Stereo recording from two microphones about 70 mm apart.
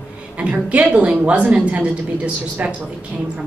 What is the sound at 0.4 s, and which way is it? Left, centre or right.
A woman's voice, right.